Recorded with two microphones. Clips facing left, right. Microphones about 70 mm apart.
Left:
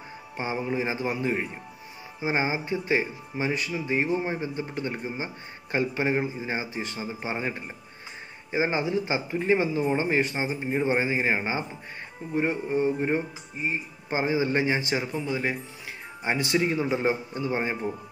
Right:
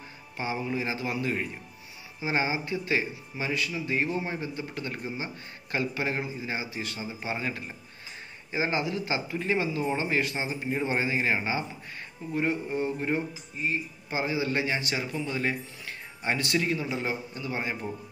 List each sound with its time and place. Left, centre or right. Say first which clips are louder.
0.4 s speech: left 2 dB; left